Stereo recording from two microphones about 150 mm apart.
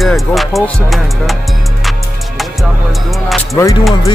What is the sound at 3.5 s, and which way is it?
Speech, 20° left (ahead or behind).